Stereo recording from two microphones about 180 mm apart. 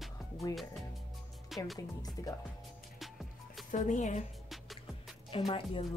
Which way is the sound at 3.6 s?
45° left (ahead or behind).